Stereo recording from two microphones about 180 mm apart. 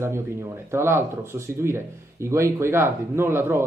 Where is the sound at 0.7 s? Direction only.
15° right (ahead or behind).